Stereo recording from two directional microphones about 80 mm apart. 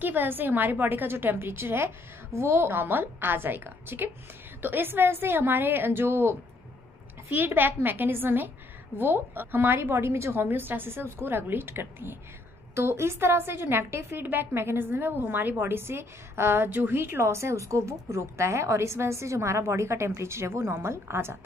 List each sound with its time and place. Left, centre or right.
0.0 s a woman's voice: right
7.3 s a woman's voice: right